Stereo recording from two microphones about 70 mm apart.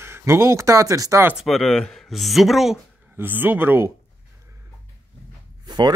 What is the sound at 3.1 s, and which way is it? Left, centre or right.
Speech, right.